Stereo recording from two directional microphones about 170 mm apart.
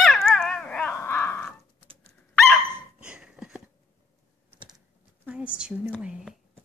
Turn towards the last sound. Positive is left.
turn(degrees=-5)  # may be behind; listen again after turning